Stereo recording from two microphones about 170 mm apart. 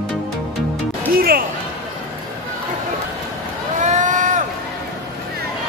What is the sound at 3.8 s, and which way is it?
Vehicle, 45° right (ahead or behind).